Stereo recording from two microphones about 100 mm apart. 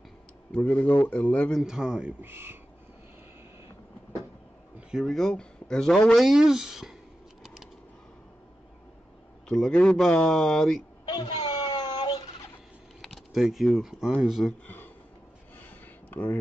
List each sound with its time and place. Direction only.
0.5 s speech: 15° left (ahead or behind)
1.6 s speech: 5° right (ahead or behind)
5.0 s speech: 5° left (ahead or behind)
9.5 s speech: 5° left (ahead or behind)
11.1 s a sound: 40° left (ahead or behind)
13.0 s speech: centre (ahead or behind)
16.1 s speech: 20° left (ahead or behind)